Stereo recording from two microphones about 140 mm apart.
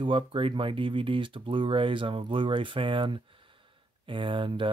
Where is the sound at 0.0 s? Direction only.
35° right (ahead or behind).